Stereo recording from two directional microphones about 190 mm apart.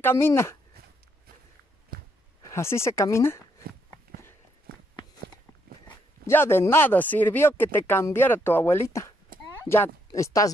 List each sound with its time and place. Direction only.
0.0 s speech: 15° left (ahead or behind)
1.9 s a sound: 50° right (ahead or behind)
2.5 s speech: 15° left (ahead or behind)
4.7 s walk: 55° right (ahead or behind)
5.9 s speech: 15° left (ahead or behind)
9.4 s a sound: 10° left (ahead or behind)